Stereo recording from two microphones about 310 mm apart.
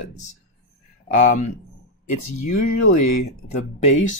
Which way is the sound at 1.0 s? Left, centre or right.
Left.